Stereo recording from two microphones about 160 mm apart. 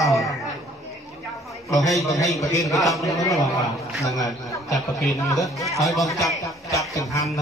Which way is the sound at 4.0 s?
20° left (ahead or behind).